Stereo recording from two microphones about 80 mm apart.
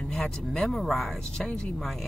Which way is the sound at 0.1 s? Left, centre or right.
Centre.